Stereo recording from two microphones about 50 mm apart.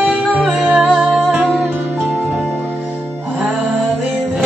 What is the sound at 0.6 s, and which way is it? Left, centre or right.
Music, right.